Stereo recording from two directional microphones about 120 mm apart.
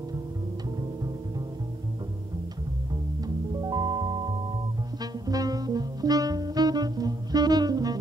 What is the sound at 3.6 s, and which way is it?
Music, 35° right (ahead or behind).